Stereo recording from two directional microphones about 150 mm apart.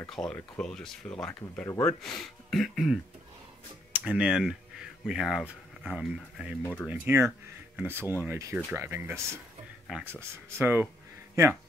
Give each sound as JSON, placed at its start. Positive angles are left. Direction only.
{"t": 0.1, "sound": "speech", "side_deg": 5}
{"t": 6.6, "sound": "speech", "side_deg": 15}
{"t": 6.9, "sound": "speech", "side_deg": -15}
{"t": 10.6, "sound": "speech", "side_deg": -15}